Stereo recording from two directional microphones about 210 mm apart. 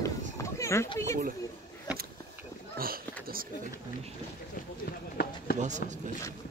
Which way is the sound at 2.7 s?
45° right (ahead or behind).